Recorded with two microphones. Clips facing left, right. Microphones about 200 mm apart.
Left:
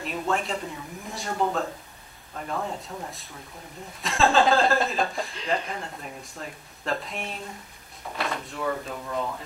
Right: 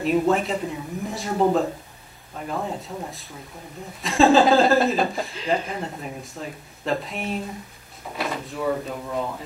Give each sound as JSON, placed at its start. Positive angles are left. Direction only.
{"t": 0.0, "sound": "speech", "side_deg": 0}